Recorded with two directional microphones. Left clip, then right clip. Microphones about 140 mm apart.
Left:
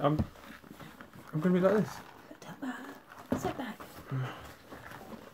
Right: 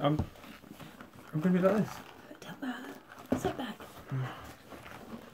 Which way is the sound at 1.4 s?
20° left (ahead or behind).